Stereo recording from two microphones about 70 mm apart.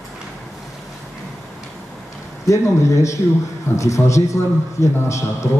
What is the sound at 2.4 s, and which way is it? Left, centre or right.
A man's voice, left.